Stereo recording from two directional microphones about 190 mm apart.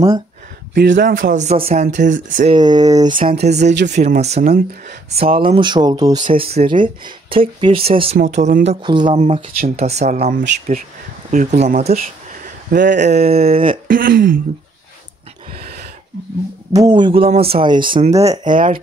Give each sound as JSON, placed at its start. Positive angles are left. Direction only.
{"t": 0.9, "sound": "speech", "side_deg": -45}
{"t": 2.5, "sound": "speech", "side_deg": -20}
{"t": 3.2, "sound": "speech", "side_deg": -45}
{"t": 4.4, "sound": "speech", "side_deg": -50}
{"t": 5.1, "sound": "speech", "side_deg": -30}
{"t": 6.3, "sound": "speech", "side_deg": -30}
{"t": 8.8, "sound": "speech", "side_deg": -25}
{"t": 11.3, "sound": "speech", "side_deg": -40}
{"t": 13.8, "sound": "speech", "side_deg": -50}
{"t": 16.7, "sound": "speech", "side_deg": -20}
{"t": 18.4, "sound": "speech", "side_deg": -45}